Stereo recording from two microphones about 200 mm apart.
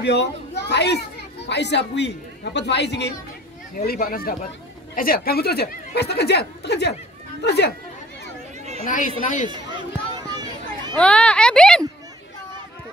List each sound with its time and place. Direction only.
0.0 s speech: 60° left (ahead or behind)
3.7 s speech: 45° left (ahead or behind)
8.8 s speech: 40° left (ahead or behind)
10.3 s a sound: 20° right (ahead or behind)
11.0 s speech: 5° left (ahead or behind)